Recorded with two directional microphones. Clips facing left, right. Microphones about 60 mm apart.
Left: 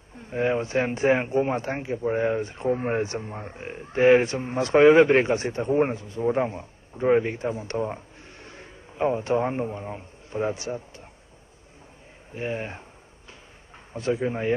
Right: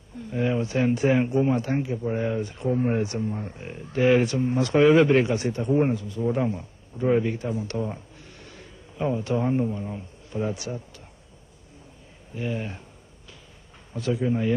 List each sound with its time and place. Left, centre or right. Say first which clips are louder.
0.1 s speech: left 1 dB; left
12.4 s speech: even; left
13.9 s speech: right 1 dB; left